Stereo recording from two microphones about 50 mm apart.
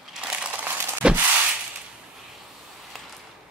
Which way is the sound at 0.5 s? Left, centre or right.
Right.